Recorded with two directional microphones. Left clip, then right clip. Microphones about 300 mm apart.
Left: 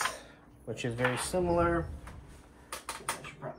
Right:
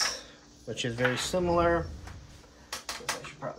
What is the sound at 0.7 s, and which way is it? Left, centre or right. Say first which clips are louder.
Speech: right 3 dB; centre.